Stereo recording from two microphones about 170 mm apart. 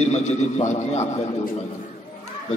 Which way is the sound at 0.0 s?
40° left (ahead or behind).